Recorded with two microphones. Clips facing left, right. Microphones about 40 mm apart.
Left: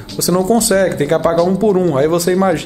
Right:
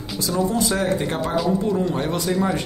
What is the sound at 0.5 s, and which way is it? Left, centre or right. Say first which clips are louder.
A man's voice: left 10 dB; left.